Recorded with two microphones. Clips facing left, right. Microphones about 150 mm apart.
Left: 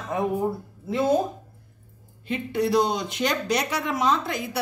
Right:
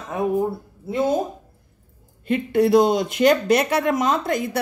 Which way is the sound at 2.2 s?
55° right (ahead or behind).